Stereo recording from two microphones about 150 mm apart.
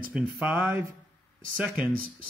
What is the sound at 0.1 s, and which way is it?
Speech, 5° right (ahead or behind).